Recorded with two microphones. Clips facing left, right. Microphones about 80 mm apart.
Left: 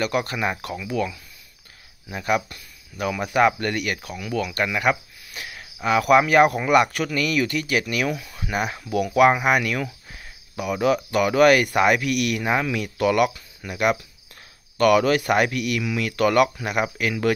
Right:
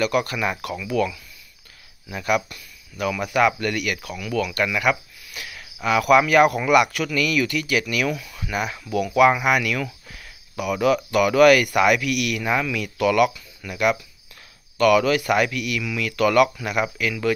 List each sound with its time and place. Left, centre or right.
0.0 s speech: left